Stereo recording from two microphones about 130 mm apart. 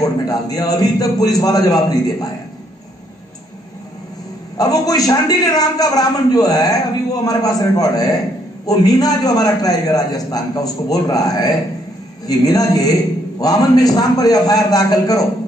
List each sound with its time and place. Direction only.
0.0 s a man's voice: 30° left (ahead or behind)
4.6 s a man's voice: 30° left (ahead or behind)